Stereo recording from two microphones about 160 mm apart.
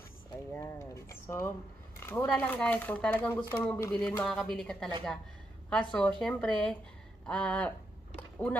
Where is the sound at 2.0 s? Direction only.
15° left (ahead or behind).